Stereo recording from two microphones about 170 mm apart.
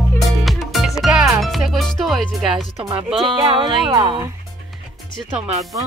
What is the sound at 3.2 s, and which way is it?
Music, 30° right (ahead or behind).